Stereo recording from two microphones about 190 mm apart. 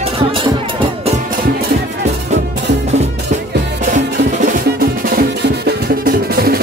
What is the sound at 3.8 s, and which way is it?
Music, 40° right (ahead or behind).